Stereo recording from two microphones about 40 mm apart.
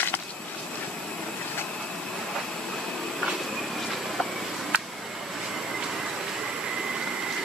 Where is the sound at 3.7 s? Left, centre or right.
Centre.